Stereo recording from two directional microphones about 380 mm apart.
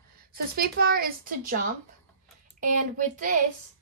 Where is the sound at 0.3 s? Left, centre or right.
Right.